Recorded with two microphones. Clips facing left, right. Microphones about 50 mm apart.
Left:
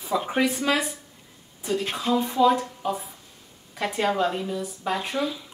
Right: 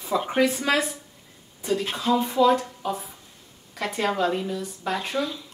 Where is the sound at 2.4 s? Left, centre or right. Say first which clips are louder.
Even; centre.